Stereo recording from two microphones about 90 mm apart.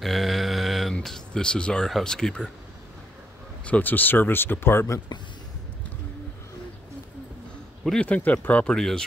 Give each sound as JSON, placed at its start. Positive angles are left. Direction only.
{"t": 0.0, "sound": "a sound", "side_deg": 0}
{"t": 0.9, "sound": "speech", "side_deg": 5}
{"t": 3.6, "sound": "speech", "side_deg": 15}
{"t": 8.0, "sound": "speech", "side_deg": 15}